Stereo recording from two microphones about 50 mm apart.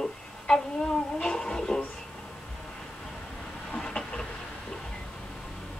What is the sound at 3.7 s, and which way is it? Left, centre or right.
Train, centre.